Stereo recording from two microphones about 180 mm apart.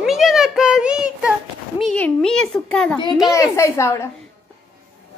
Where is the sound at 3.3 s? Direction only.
15° left (ahead or behind).